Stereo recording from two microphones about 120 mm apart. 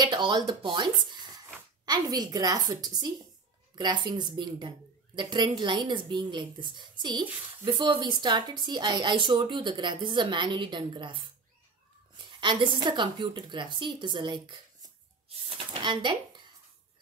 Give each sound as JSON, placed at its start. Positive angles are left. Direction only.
{"t": 0.0, "sound": "a woman's voice", "side_deg": -40}
{"t": 12.3, "sound": "a woman's voice", "side_deg": -45}